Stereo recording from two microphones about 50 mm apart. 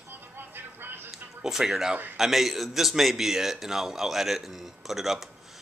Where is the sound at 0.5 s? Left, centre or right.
Right.